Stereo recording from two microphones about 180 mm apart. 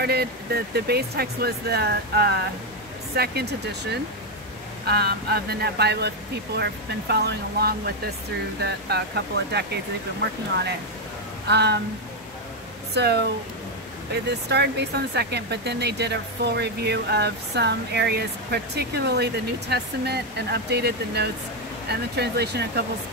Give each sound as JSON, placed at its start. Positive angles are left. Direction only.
{"t": 0.0, "sound": "speech", "side_deg": -60}
{"t": 11.4, "sound": "speech", "side_deg": -70}
{"t": 12.9, "sound": "speech", "side_deg": -65}